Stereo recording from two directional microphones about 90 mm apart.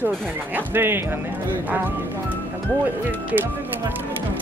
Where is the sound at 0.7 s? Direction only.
25° right (ahead or behind).